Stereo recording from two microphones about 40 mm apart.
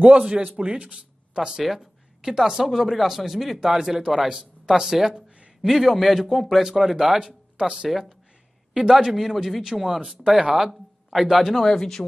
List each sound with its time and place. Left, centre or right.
0.1 s speech: right
1.3 s a man's voice: centre
7.5 s speech: centre